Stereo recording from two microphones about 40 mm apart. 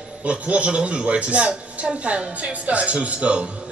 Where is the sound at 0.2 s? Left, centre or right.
Right.